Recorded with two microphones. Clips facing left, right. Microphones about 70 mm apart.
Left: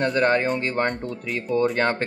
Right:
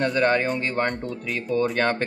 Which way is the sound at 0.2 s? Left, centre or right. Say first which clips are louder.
Left 1 dB; left.